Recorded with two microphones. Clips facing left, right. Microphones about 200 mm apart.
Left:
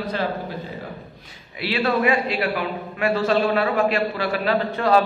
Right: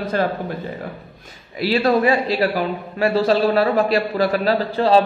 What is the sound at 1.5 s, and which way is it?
A man's voice, 40° right (ahead or behind).